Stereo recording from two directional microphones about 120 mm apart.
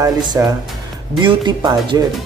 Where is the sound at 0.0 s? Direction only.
30° right (ahead or behind).